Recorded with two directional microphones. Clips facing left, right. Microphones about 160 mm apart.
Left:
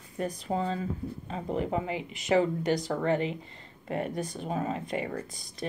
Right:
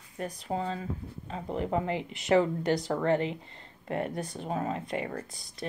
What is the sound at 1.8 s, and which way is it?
Speech, 15° left (ahead or behind).